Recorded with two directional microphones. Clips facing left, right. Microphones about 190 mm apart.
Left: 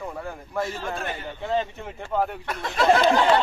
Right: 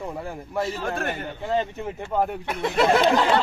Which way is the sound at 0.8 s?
55° right (ahead or behind).